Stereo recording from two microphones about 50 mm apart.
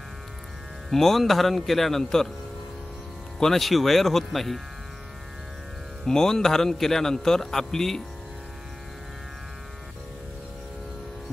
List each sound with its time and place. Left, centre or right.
0.8 s a man's voice: centre
3.3 s a man's voice: centre
6.0 s a man's voice: centre